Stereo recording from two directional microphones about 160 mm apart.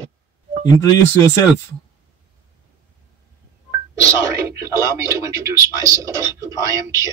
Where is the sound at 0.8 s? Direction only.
20° left (ahead or behind).